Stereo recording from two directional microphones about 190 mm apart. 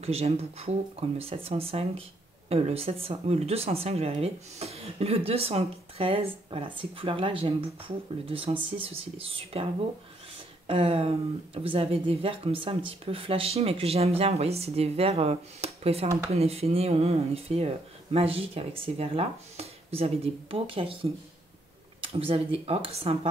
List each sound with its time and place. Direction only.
0.0 s speech: 30° right (ahead or behind)
10.7 s speech: 30° right (ahead or behind)